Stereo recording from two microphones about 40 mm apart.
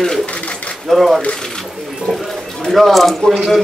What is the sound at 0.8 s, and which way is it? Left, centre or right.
Speech, centre.